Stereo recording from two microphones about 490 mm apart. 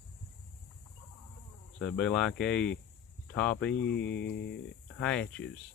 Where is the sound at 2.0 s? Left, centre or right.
Centre.